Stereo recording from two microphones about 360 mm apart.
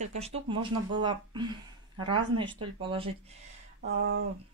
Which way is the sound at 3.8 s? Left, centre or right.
Right.